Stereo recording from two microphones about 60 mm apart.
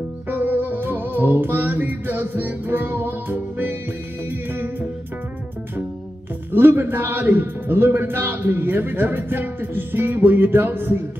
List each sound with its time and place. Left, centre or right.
0.3 s music: right
4.3 s a man's voice: right
6.5 s a man's voice: right